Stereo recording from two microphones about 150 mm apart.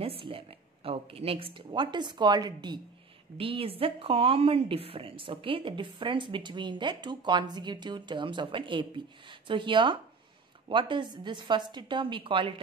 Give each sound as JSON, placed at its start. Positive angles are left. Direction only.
{"t": 0.0, "sound": "a woman's voice", "side_deg": -40}